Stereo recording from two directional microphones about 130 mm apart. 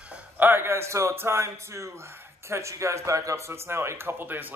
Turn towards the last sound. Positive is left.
turn(degrees=-15)  # may be behind; listen again after turning